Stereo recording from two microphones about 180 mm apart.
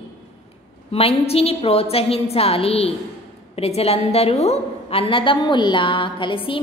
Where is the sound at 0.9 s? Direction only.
35° left (ahead or behind).